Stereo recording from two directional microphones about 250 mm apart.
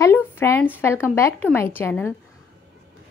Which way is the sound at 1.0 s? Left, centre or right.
Centre.